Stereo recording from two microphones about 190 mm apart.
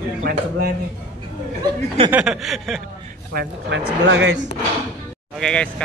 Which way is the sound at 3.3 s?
60° right (ahead or behind).